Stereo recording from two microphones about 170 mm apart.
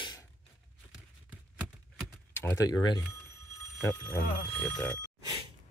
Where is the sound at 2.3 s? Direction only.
15° left (ahead or behind).